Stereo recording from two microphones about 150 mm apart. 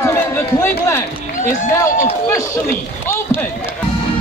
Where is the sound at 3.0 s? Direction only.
15° left (ahead or behind).